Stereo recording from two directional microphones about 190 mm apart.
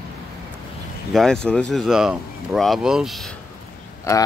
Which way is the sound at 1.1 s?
5° left (ahead or behind).